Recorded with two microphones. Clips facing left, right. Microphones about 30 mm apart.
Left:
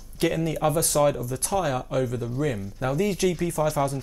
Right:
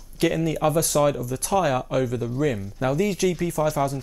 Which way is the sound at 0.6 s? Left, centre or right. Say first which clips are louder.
Right 2 dB; right.